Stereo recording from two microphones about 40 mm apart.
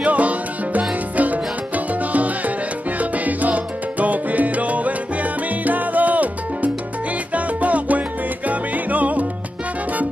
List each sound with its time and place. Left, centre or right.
0.0 s music: right
2.1 s salsa music: right
8.5 s music: right